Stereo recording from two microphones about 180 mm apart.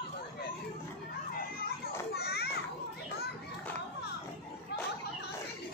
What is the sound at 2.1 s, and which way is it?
Children playing, 65° left (ahead or behind).